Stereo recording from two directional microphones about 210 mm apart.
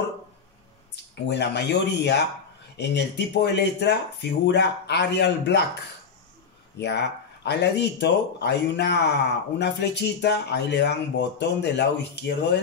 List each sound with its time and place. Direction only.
1.3 s speech: 55° left (ahead or behind)
6.8 s speech: 55° left (ahead or behind)